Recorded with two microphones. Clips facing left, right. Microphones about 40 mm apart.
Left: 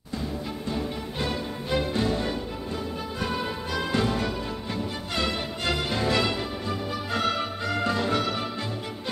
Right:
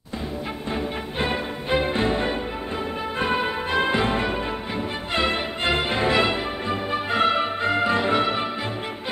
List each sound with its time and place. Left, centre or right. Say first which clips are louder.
0.7 s music: right 6 dB; right